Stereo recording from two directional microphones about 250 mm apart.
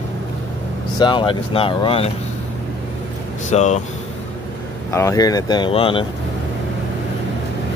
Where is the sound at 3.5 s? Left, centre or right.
Left.